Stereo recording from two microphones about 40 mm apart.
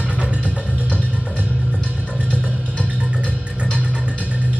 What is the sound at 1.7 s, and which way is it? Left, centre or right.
Music, left.